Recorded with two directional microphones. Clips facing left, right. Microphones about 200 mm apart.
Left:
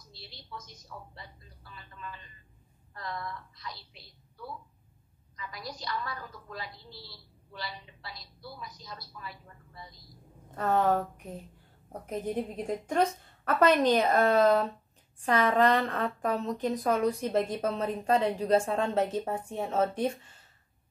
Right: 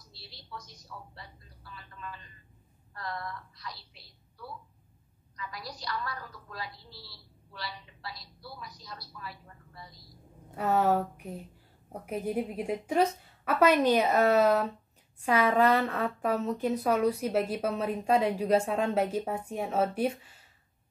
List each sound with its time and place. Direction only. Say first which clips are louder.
0.1 s a woman's voice: even; 20° left (ahead or behind)
3.0 s a woman's voice: even; 20° left (ahead or behind)
5.6 s a woman's voice: left 1 dB; 20° left (ahead or behind)
10.5 s a woman's voice: even; 10° right (ahead or behind)